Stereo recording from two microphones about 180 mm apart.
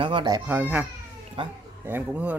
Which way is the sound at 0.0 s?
25° right (ahead or behind).